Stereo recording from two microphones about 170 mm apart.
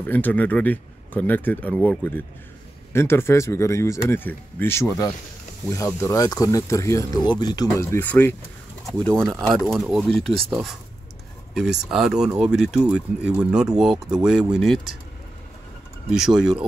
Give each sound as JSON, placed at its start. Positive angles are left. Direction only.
{"t": 0.0, "sound": "speech", "side_deg": 10}
{"t": 11.9, "sound": "speech", "side_deg": -5}
{"t": 16.1, "sound": "speech", "side_deg": -5}